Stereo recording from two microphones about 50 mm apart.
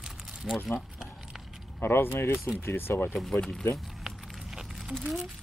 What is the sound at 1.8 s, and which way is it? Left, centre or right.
Speech, left.